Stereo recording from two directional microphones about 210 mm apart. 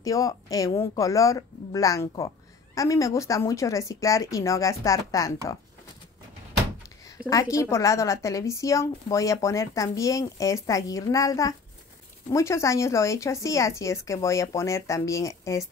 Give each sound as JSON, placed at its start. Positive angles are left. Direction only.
{"t": 0.0, "sound": "speech", "side_deg": 15}
{"t": 7.2, "sound": "speech", "side_deg": 15}